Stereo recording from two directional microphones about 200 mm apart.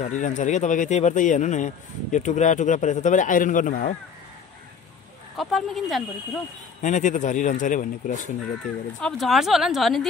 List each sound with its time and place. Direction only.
0.0 s speech: 35° left (ahead or behind)
5.4 s speech: centre (ahead or behind)
6.8 s speech: 35° left (ahead or behind)
9.0 s speech: centre (ahead or behind)